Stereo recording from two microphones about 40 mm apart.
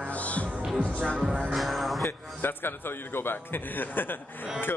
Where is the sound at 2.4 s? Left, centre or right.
Left.